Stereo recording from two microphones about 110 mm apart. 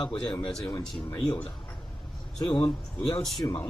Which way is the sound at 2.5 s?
45° left (ahead or behind).